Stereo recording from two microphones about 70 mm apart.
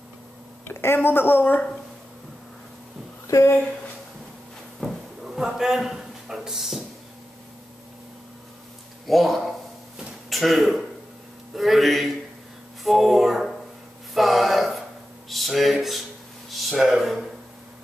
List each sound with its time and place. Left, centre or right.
0.7 s a woman's voice: left
3.3 s speech: left
4.7 s a sound: centre
9.0 s music: centre
10.3 s speech: centre
12.8 s music: centre
14.1 s a sound: centre
15.2 s speech: centre